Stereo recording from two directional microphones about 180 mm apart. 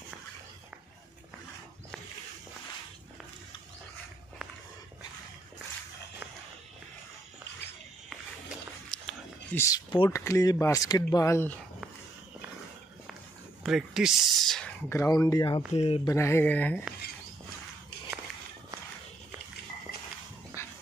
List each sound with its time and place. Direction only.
8.9 s a sound: 5° left (ahead or behind)
9.7 s speech: 25° left (ahead or behind)
13.6 s speech: centre (ahead or behind)
14.9 s speech: 20° left (ahead or behind)
16.1 s speech: 15° left (ahead or behind)
20.6 s dog: 15° left (ahead or behind)